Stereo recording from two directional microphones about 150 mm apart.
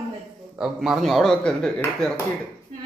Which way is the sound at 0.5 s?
5° right (ahead or behind).